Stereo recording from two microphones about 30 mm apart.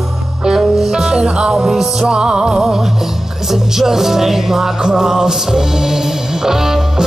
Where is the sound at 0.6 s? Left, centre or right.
Centre.